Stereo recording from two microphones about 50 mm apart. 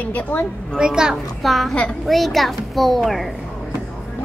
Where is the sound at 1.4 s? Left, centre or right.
Centre.